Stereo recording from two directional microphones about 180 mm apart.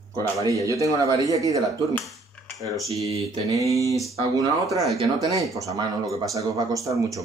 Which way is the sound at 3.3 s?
20° right (ahead or behind).